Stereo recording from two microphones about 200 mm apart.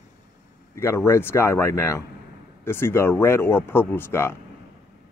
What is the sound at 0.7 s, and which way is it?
Speech, 10° left (ahead or behind).